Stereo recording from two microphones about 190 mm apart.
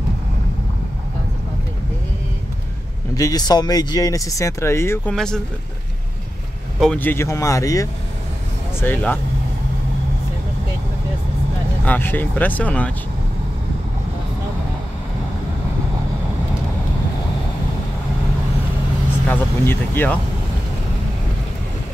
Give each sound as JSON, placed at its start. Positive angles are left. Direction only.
{"t": 3.2, "sound": "speech", "side_deg": 20}
{"t": 6.8, "sound": "speech", "side_deg": 5}
{"t": 11.8, "sound": "speech", "side_deg": 10}
{"t": 19.2, "sound": "vehicle", "side_deg": 10}